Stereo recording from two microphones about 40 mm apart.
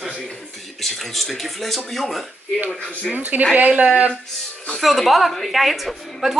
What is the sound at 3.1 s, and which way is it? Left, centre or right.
Speech, right.